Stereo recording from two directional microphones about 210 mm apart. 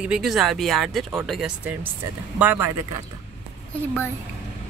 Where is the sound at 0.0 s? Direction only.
Centre (ahead or behind).